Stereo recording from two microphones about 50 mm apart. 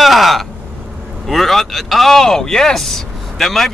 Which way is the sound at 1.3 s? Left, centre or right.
Centre.